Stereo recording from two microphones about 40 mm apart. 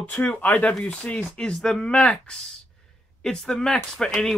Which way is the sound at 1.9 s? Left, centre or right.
Left.